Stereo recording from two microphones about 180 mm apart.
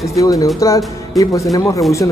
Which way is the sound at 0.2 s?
20° left (ahead or behind).